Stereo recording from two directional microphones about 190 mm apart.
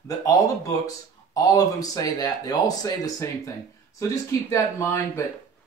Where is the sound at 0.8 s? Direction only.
20° left (ahead or behind).